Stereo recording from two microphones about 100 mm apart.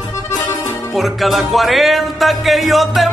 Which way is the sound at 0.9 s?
Centre (ahead or behind).